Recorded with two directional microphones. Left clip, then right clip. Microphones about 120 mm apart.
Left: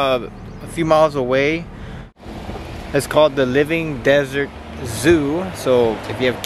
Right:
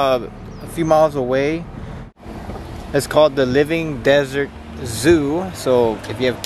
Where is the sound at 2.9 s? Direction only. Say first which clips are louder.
Even; 10° right (ahead or behind).